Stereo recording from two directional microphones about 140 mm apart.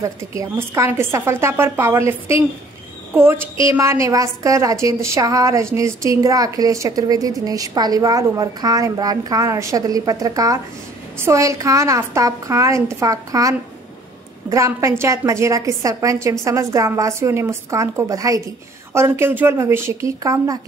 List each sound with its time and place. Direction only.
0.0 s a woman's voice: 20° right (ahead or behind)